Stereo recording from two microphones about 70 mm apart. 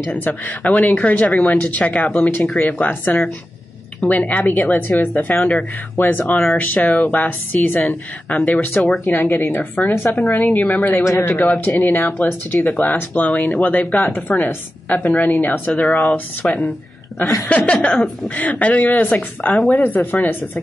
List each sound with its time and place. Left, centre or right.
0.1 s speech: left